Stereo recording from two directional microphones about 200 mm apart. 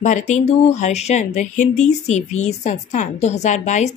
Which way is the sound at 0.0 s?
35° left (ahead or behind).